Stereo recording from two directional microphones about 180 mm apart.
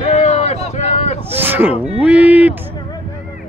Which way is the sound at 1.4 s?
10° right (ahead or behind).